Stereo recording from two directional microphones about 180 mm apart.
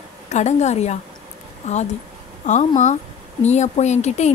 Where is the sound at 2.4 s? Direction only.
45° left (ahead or behind).